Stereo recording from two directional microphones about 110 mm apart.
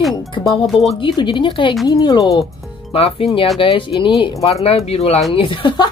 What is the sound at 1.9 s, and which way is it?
Speech, 35° left (ahead or behind).